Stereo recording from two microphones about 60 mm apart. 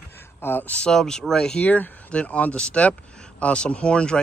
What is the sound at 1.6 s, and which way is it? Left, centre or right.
Speech, left.